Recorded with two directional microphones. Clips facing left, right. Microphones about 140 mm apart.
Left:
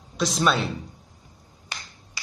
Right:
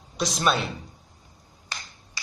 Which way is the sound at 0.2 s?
Centre (ahead or behind).